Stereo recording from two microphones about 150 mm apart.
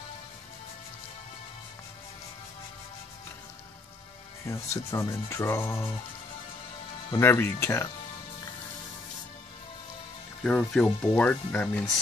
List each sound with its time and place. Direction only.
4.5 s speech: 20° left (ahead or behind)
7.1 s speech: 15° left (ahead or behind)
10.4 s speech: 5° left (ahead or behind)